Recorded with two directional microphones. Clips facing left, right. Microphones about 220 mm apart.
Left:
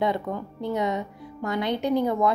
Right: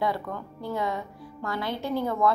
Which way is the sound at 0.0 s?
20° left (ahead or behind).